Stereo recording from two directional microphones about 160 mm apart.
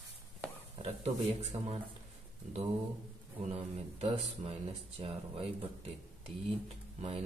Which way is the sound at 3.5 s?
40° right (ahead or behind).